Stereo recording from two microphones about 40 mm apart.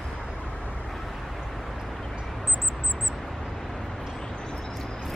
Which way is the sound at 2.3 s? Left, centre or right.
Centre.